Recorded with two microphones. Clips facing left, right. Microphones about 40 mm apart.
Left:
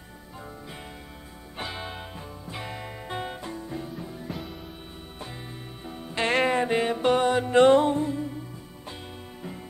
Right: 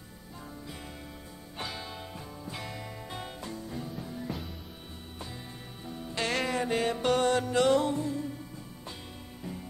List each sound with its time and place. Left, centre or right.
1.6 s music: left; by 4.5 s centre
6.1 s music: left
7.4 s music: left